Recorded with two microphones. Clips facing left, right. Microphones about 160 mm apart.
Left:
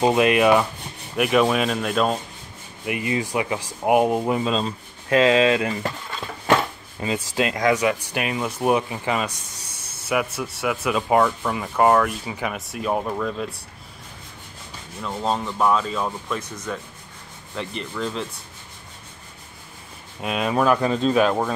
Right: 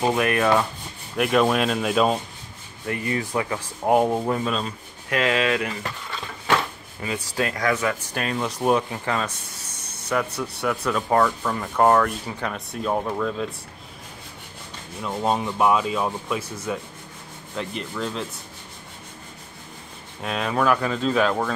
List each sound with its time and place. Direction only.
0.0 s speech: 20° left (ahead or behind)
1.1 s rub: 5° left (ahead or behind)
2.8 s speech: 15° left (ahead or behind)
4.5 s speech: 25° left (ahead or behind)
7.0 s speech: 25° left (ahead or behind); by 11.0 s 5° left (ahead or behind)
11.0 s rub: 15° left (ahead or behind)
15.0 s rub: 10° right (ahead or behind)
20.2 s speech: 15° left (ahead or behind)